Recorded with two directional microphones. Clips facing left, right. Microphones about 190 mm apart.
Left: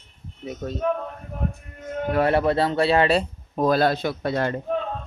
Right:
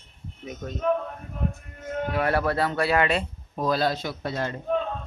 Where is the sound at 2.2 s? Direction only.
20° left (ahead or behind); by 4.5 s 60° left (ahead or behind).